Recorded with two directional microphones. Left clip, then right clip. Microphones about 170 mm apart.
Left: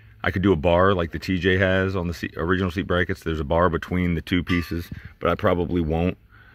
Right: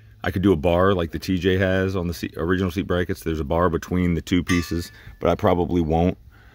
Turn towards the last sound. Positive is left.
turn(degrees=-30)  # may be behind; listen again after turning